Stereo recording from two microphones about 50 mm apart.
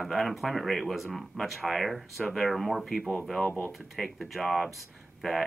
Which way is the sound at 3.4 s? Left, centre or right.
Left.